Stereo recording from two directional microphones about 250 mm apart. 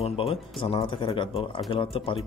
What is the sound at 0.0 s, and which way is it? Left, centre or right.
Speech, left.